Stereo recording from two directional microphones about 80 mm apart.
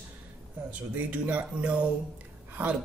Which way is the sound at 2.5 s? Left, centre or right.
Right.